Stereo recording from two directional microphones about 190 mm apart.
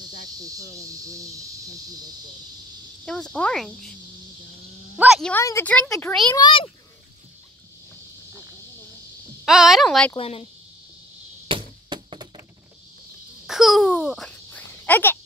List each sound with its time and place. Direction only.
0.7 s speech: 15° right (ahead or behind)
3.1 s speech: 5° left (ahead or behind)
4.9 s a sound: 5° right (ahead or behind)
5.3 s speech: 15° left (ahead or behind)
6.3 s a child's voice: 25° left (ahead or behind)
9.4 s speech: centre (ahead or behind)
10.1 s speech: 30° left (ahead or behind)
11.4 s chop: 25° right (ahead or behind)
13.5 s a sound: centre (ahead or behind)